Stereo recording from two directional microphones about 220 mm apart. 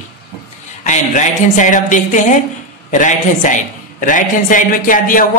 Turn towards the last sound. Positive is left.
turn(degrees=40)  # may be behind; listen again after turning